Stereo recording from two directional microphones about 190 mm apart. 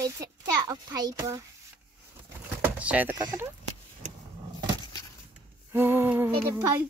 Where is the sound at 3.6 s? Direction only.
35° right (ahead or behind).